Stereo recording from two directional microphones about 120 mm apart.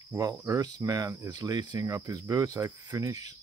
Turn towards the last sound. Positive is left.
turn(degrees=-30)  # may be behind; listen again after turning